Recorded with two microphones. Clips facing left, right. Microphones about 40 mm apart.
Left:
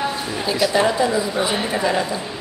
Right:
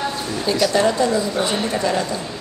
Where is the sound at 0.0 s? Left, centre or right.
Centre.